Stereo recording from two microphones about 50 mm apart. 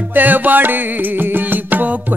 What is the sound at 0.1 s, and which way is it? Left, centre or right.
Music, right.